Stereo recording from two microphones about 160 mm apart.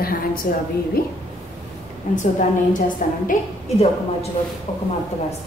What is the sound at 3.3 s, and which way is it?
A woman's voice, 40° left (ahead or behind).